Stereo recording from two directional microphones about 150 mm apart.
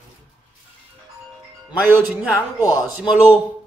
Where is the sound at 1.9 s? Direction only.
15° right (ahead or behind).